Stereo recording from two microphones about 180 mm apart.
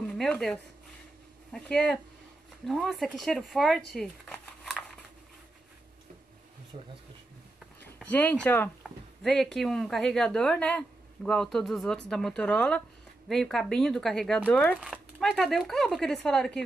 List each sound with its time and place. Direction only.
0.1 s speech: 5° left (ahead or behind)
6.7 s speech: 35° right (ahead or behind)
7.8 s speech: 10° left (ahead or behind)